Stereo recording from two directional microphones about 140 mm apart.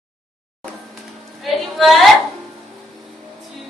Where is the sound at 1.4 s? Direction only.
Centre (ahead or behind).